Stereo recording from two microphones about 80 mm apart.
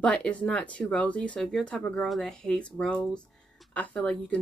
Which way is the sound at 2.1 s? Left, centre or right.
Centre.